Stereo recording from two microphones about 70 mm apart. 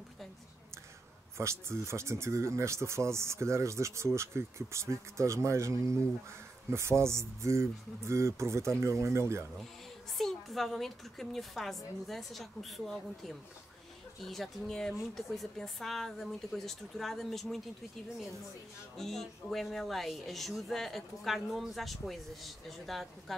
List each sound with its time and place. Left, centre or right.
1.4 s speech: right
10.1 s speech: centre
18.9 s speech: centre